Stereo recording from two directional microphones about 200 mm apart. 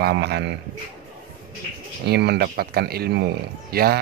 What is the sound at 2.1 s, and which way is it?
Speech, 55° right (ahead or behind).